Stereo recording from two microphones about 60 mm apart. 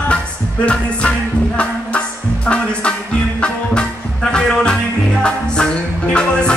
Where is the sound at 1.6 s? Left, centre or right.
Left.